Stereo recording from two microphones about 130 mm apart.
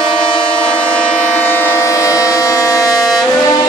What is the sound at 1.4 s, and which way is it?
Civil defense siren, 15° left (ahead or behind).